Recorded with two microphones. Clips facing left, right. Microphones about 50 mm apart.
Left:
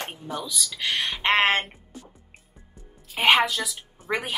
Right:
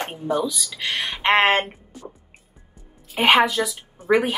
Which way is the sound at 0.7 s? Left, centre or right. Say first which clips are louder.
Left 1 dB; centre.